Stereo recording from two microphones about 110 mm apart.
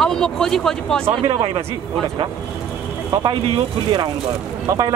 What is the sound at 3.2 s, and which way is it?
Speech, 55° right (ahead or behind).